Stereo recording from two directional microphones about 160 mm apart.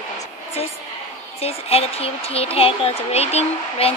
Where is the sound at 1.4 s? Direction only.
40° left (ahead or behind).